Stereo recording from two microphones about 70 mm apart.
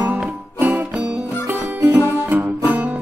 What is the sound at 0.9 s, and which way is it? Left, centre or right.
Music, centre.